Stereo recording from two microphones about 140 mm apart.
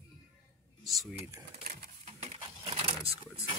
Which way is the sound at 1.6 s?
80° right.